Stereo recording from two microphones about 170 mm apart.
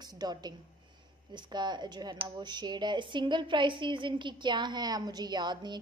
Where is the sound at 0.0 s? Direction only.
25° right (ahead or behind).